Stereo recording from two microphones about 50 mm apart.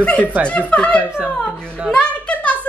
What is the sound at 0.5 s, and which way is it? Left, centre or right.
Speech, left.